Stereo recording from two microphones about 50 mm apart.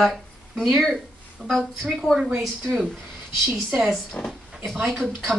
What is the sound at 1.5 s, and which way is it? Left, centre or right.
Speech, centre.